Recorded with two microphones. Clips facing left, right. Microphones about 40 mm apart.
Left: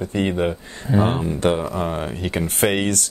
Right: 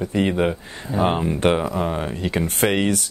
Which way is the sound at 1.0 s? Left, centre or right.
Right.